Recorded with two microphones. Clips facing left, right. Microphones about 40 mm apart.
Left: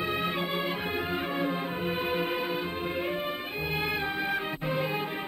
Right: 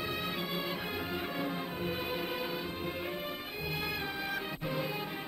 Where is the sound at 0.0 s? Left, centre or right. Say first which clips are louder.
Left 6 dB; left.